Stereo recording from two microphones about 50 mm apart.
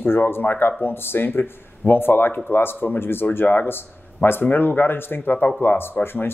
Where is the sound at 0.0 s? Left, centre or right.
Left.